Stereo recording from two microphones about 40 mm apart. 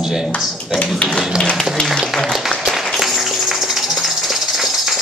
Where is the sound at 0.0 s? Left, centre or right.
Centre.